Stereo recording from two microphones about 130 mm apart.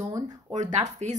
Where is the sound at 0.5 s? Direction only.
65° right (ahead or behind).